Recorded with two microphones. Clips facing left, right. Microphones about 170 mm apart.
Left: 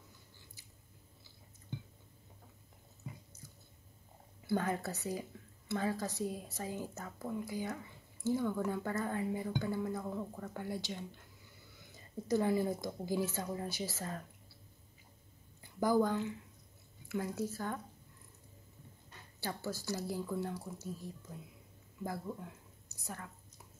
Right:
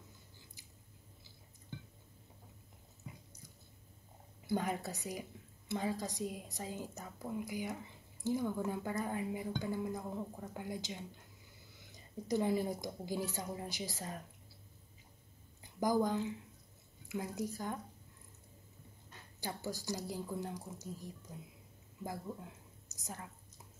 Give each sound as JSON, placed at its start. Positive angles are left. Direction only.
{"t": 4.5, "sound": "speech", "side_deg": -15}
{"t": 15.8, "sound": "speech", "side_deg": -15}
{"t": 19.4, "sound": "speech", "side_deg": -15}
{"t": 22.9, "sound": "a woman's voice", "side_deg": -20}